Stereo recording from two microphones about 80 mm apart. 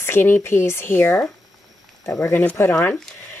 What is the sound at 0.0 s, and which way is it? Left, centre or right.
Speech, left.